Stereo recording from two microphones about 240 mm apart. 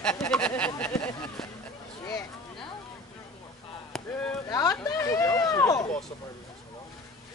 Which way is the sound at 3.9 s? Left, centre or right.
Centre.